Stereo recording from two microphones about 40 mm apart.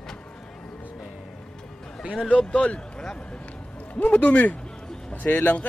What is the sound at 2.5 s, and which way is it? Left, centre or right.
Speech, left.